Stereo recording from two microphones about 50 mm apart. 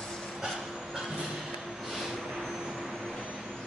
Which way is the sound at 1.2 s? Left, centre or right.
Centre.